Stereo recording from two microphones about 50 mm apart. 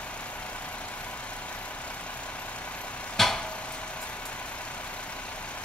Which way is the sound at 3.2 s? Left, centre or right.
Centre.